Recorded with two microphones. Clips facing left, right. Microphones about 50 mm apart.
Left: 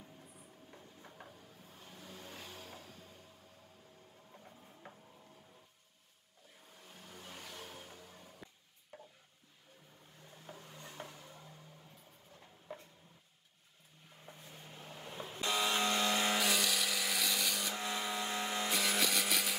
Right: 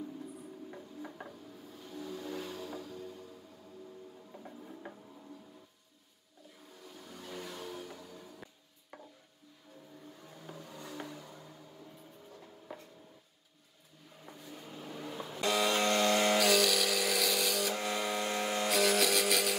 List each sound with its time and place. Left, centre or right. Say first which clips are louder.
1.9 s vehicle: right 11 dB; right
2.3 s vehicle: right 10 dB; right
4.4 s music: right 10 dB; right
7.1 s vehicle: right 7 dB; right
7.6 s a sound: right 7 dB; right
10.5 s vehicle: right 6 dB; right
14.2 s vehicle: right 5 dB; right
15.4 s vehicle: right 4 dB; centre